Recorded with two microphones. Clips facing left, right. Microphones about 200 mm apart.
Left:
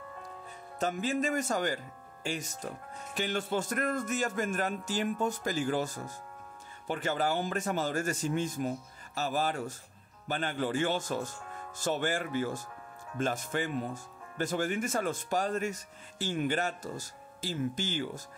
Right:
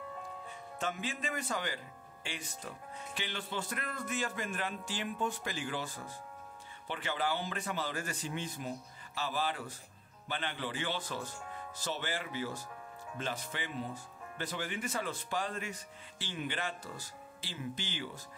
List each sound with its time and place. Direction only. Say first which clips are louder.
0.7 s speech: left 8 dB; 40° left (ahead or behind)